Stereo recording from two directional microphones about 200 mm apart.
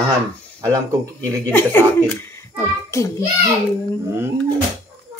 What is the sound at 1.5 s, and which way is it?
A child's voice, 10° left (ahead or behind).